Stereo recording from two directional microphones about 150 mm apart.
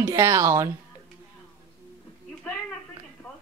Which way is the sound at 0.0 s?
20° right (ahead or behind).